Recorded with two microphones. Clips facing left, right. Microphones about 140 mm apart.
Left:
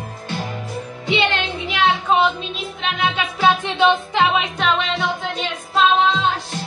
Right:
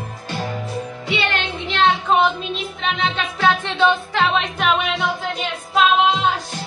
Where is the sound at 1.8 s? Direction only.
5° left (ahead or behind).